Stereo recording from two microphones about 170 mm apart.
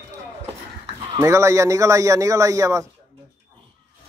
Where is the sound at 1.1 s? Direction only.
15° right (ahead or behind).